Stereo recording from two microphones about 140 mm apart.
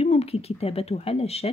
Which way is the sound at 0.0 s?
45° left (ahead or behind).